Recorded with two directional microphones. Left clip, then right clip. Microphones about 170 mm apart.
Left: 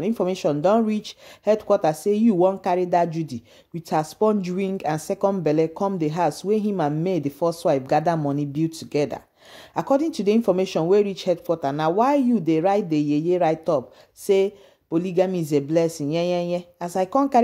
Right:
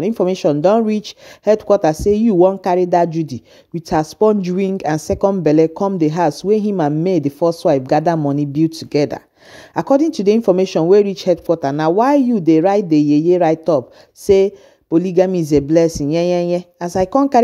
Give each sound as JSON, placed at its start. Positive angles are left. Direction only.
{"t": 0.0, "sound": "speech", "side_deg": -30}